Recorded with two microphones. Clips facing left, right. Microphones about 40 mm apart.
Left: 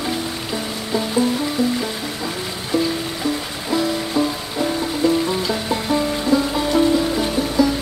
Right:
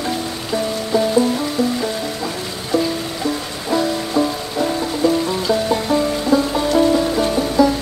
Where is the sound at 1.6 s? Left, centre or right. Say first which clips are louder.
Right 1 dB; centre.